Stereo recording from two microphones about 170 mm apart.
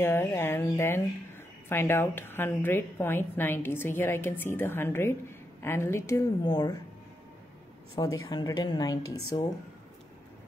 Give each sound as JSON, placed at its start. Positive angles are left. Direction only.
{"t": 0.0, "sound": "speech", "side_deg": 15}
{"t": 8.0, "sound": "a woman's voice", "side_deg": 25}